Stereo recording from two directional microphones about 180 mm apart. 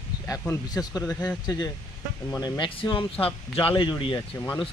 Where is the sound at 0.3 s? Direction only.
20° left (ahead or behind).